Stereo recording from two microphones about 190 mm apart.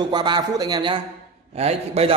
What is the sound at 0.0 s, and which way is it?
A man's voice, 25° right (ahead or behind).